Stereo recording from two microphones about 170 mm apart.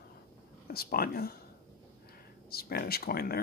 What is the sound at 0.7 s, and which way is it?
Speech, 60° left (ahead or behind).